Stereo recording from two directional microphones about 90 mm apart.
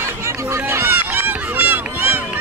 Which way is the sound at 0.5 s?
30° right (ahead or behind).